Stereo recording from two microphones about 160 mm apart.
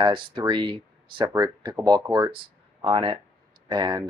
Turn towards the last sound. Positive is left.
turn(degrees=-25)  # may be behind; listen again after turning